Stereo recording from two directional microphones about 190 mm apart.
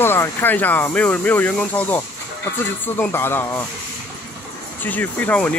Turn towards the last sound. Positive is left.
turn(degrees=10)  # may be behind; listen again after turning